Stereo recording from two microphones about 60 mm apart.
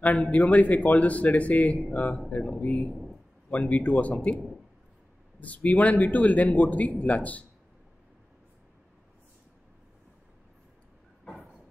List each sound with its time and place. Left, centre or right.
0.2 s speech: left
5.4 s speech: left